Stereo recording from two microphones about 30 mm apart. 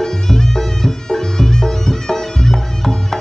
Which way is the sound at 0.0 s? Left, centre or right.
Centre.